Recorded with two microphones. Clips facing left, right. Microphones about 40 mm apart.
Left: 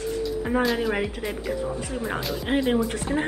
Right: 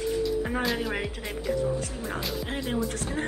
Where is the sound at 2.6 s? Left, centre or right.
Left.